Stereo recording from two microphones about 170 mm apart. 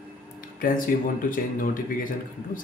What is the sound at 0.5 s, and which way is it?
Speech, 55° left (ahead or behind).